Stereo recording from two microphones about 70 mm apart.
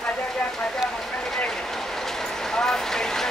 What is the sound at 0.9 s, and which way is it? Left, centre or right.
Vehicle, centre.